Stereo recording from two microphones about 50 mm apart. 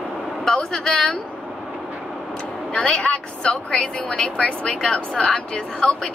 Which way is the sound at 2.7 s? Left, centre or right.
Left.